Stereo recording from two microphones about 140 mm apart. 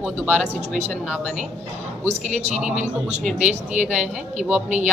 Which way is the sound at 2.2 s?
55° right (ahead or behind).